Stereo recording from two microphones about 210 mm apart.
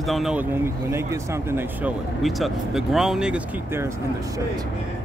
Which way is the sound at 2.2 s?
Centre (ahead or behind).